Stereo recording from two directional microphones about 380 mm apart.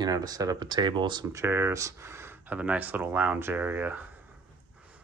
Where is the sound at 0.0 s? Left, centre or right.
Centre.